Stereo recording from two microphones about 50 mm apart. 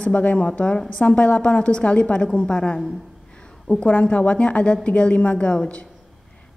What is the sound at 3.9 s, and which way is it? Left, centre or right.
A woman's voice, left.